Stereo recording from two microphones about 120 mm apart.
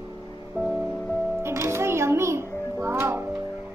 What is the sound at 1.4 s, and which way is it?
Music, 20° right (ahead or behind).